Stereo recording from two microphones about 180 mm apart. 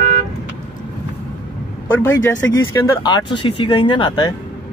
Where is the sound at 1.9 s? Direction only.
15° left (ahead or behind).